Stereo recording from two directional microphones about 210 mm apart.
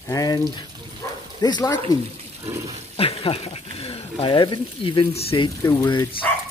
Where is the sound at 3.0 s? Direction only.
25° left (ahead or behind).